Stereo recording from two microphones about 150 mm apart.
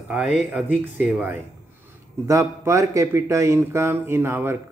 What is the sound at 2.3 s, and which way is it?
Speech, 20° right (ahead or behind).